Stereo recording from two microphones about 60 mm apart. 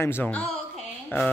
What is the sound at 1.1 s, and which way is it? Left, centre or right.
Speech, left.